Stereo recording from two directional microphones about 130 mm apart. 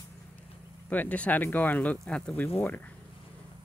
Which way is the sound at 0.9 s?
10° left (ahead or behind).